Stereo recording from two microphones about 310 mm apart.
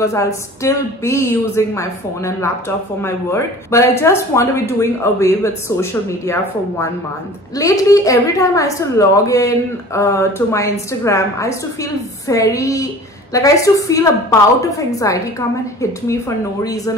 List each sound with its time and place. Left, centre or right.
0.0 s a woman's voice: centre